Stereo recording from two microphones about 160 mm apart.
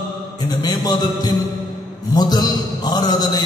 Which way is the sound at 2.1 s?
25° left (ahead or behind).